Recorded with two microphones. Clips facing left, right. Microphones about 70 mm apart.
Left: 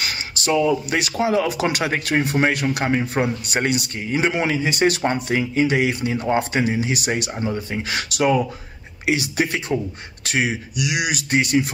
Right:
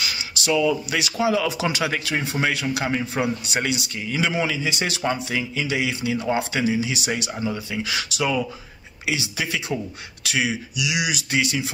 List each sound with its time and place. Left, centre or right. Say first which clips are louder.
0.0 s a man's voice: left 2 dB; left